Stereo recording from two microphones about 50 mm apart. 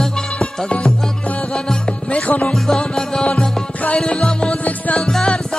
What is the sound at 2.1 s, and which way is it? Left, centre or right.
Music, left.